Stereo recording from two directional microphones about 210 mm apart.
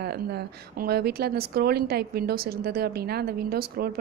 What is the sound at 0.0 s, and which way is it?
A woman's voice, 50° right (ahead or behind).